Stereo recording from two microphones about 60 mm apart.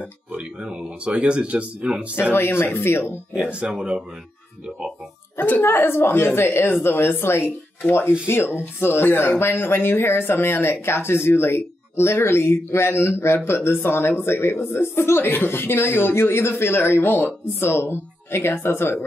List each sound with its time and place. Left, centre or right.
0.3 s speech: centre
2.3 s speech: left
3.3 s speech: centre
5.4 s speech: left
8.5 s speech: left